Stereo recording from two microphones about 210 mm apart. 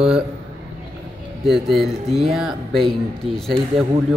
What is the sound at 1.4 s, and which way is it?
A man's voice, centre (ahead or behind).